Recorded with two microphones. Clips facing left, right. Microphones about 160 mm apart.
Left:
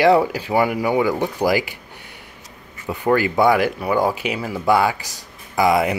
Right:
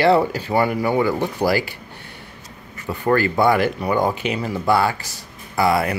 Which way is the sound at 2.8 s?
10° left (ahead or behind).